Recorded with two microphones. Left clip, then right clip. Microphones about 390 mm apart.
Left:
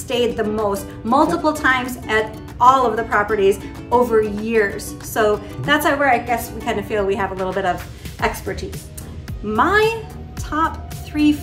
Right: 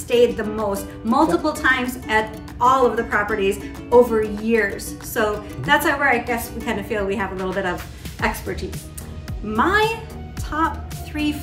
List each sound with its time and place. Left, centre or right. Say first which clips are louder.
0.1 s speech: right 2 dB; centre